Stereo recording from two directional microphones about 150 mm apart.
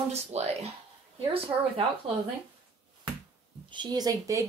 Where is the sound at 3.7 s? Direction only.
30° right (ahead or behind).